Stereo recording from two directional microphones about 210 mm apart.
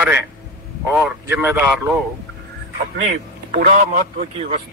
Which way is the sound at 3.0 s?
35° right (ahead or behind).